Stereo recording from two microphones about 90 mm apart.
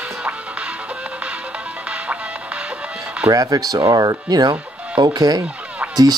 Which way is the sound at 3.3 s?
40° right (ahead or behind).